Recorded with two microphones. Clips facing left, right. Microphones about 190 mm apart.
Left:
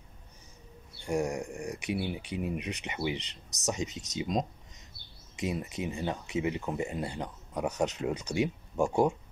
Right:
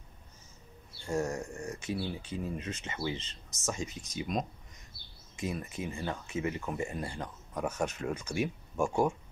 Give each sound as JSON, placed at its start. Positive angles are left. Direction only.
{"t": 1.0, "sound": "speech", "side_deg": 15}